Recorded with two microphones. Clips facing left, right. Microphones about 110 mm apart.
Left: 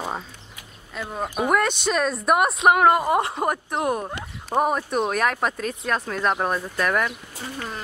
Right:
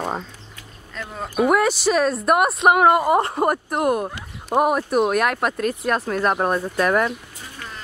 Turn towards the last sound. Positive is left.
turn(degrees=35)  # may be behind; listen again after turning